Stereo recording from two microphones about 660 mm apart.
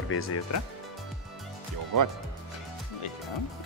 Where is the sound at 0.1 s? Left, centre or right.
Centre.